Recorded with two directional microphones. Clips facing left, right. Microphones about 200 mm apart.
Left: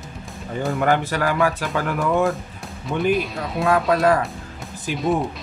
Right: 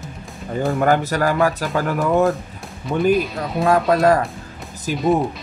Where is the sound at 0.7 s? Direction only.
40° right (ahead or behind).